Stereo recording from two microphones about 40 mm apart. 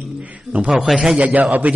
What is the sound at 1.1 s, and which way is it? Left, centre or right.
Speech, right.